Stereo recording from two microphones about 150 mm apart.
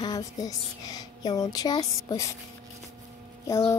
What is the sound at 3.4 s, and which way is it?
Speech, 20° left (ahead or behind).